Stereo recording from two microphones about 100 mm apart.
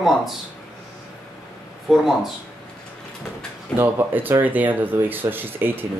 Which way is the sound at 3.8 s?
20° right (ahead or behind).